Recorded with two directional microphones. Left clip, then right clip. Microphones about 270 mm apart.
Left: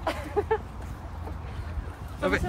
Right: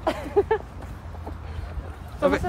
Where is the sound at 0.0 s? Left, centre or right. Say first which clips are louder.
Right 6 dB; right.